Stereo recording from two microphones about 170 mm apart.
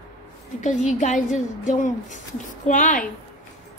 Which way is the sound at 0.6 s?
45° left (ahead or behind).